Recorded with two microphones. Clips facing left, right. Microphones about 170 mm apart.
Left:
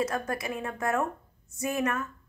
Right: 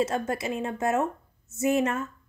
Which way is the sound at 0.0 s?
25° right (ahead or behind).